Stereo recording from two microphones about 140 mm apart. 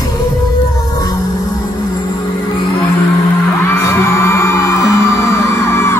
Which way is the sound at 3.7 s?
20° left (ahead or behind).